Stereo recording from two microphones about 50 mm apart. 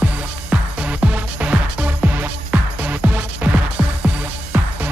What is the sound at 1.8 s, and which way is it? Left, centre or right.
Music, right.